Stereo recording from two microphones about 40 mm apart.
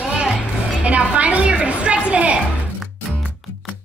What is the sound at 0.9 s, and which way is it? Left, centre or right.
A woman's voice, right.